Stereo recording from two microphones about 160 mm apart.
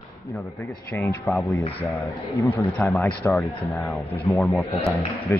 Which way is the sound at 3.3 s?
Centre (ahead or behind).